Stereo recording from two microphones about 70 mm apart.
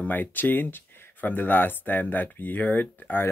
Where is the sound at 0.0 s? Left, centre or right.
Left.